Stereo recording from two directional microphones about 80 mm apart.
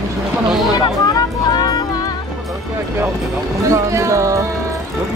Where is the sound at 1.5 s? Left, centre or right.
Left.